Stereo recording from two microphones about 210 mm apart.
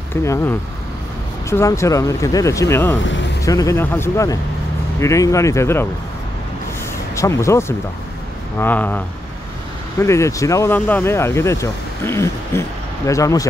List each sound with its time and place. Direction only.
0.1 s speech: 10° left (ahead or behind)
3.0 s speech: 60° left (ahead or behind)
3.4 s speech: 15° left (ahead or behind)
7.2 s speech: 15° left (ahead or behind)